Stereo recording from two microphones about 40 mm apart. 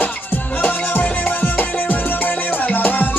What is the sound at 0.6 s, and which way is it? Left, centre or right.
Music, left.